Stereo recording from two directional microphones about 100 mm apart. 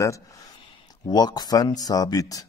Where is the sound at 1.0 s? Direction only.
45° left (ahead or behind).